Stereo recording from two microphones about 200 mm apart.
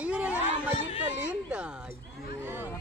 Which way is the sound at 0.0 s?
5° right (ahead or behind).